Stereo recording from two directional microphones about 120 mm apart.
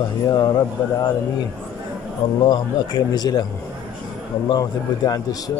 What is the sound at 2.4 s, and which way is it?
Speech, 35° left (ahead or behind).